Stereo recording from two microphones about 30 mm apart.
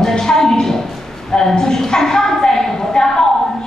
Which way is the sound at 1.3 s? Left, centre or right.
Left.